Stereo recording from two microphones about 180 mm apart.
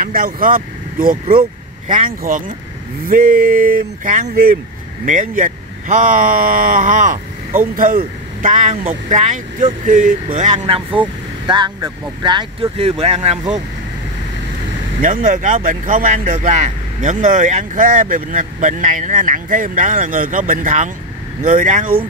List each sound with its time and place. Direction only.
0.0 s speech: 50° right (ahead or behind); by 13.4 s 35° right (ahead or behind)
15.0 s speech: 45° right (ahead or behind)